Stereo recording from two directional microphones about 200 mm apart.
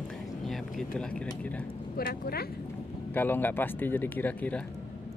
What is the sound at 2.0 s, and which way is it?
Speech, 50° left (ahead or behind).